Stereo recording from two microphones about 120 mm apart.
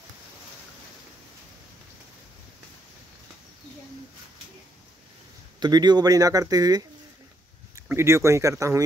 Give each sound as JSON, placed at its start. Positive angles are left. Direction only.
{"t": 5.6, "sound": "speech", "side_deg": -35}